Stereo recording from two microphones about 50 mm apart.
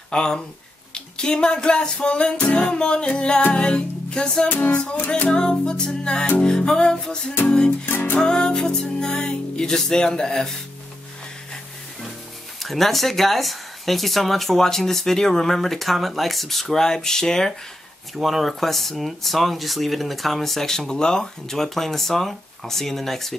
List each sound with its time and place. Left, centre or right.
0.1 s speech: centre
0.9 s music: centre
4.5 s music: left
5.3 s music: centre
7.9 s music: left
8.2 s music: centre
12.5 s speech: centre
18.1 s speech: centre